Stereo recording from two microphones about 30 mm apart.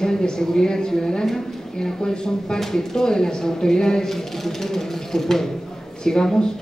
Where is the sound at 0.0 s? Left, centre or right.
Left.